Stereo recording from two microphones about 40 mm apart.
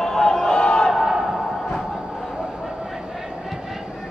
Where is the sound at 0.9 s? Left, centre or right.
Centre.